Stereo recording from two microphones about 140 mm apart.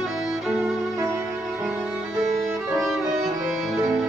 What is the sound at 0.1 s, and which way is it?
Violin, 5° right (ahead or behind).